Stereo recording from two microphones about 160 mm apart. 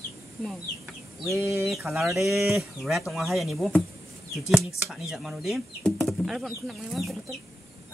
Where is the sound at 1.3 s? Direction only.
15° right (ahead or behind).